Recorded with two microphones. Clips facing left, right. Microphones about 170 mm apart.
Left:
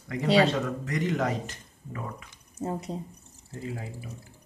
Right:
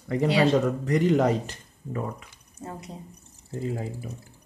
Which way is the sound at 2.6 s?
25° left (ahead or behind).